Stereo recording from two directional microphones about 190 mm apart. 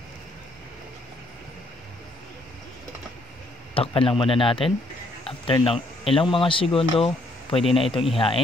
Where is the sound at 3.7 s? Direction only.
30° left (ahead or behind).